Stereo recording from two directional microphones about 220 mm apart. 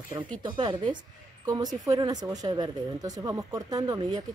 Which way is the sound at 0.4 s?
20° right (ahead or behind).